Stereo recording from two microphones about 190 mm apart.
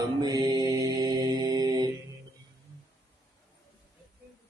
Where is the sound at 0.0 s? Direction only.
20° right (ahead or behind).